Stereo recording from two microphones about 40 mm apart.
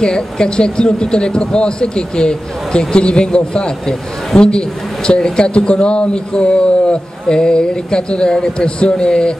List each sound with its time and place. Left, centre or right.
0.0 s a man's voice: centre